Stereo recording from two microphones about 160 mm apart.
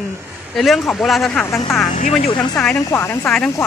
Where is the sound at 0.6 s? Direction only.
Centre (ahead or behind).